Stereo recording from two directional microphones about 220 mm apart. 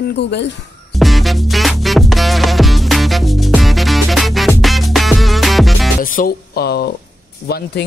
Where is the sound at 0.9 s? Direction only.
Centre (ahead or behind).